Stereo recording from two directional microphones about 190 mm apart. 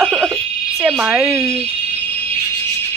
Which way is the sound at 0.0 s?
5° right (ahead or behind).